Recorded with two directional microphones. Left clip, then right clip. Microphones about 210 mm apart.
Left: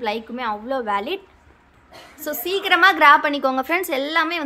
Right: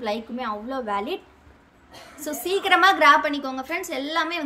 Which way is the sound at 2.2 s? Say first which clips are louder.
Left 1 dB; 5° left (ahead or behind).